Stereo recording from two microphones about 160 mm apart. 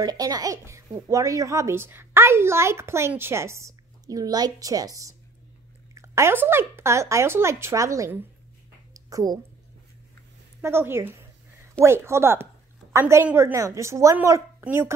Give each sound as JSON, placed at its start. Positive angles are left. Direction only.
{"t": 0.0, "sound": "speech", "side_deg": -25}
{"t": 8.9, "sound": "a sound", "side_deg": -20}
{"t": 10.6, "sound": "speech", "side_deg": -15}